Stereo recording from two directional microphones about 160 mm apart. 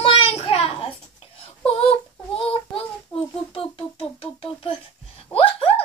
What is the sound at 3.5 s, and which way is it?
Speech, 35° left (ahead or behind).